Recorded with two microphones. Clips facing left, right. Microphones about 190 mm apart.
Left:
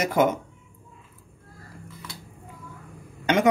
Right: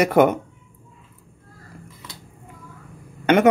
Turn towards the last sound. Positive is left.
turn(degrees=-60)  # may be behind; listen again after turning